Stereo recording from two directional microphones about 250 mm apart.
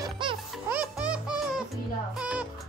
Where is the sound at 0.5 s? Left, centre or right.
Centre.